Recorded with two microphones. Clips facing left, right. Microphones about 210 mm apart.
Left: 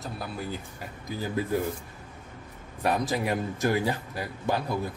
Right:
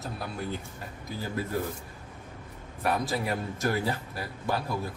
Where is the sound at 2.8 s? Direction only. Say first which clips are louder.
Left 2 dB; 20° left (ahead or behind).